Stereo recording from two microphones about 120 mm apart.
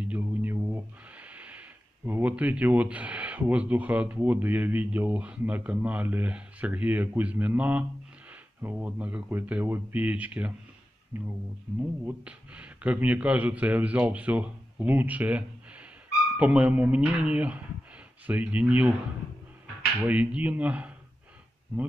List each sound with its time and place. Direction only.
0.0 s a sound: 15° right (ahead or behind)
2.0 s speech: 15° right (ahead or behind)
20.0 s speech: 10° right (ahead or behind)